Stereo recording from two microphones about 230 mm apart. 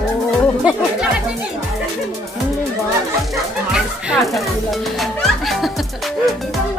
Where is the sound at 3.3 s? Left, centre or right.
Centre.